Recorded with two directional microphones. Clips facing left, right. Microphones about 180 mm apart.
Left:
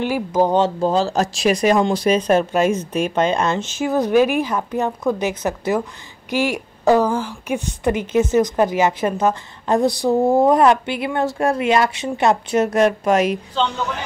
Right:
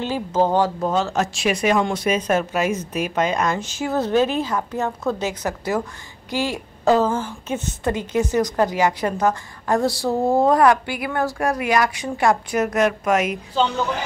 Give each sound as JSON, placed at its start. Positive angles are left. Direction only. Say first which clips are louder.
{"t": 0.0, "sound": "a woman's voice", "louder": "left 2 dB", "side_deg": 15}